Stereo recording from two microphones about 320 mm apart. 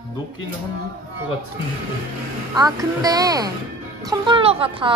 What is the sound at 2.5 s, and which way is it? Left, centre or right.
A woman's voice, centre.